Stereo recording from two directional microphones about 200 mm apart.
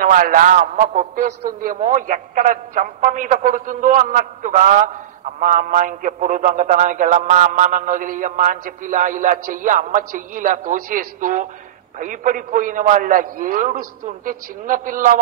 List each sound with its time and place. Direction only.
0.0 s speech: 45° right (ahead or behind)